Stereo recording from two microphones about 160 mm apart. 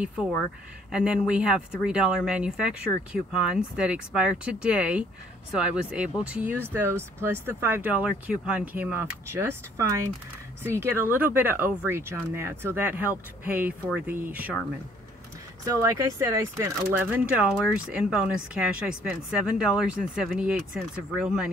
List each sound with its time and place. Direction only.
0.9 s speech: 5° right (ahead or behind)
15.6 s speech: 20° right (ahead or behind)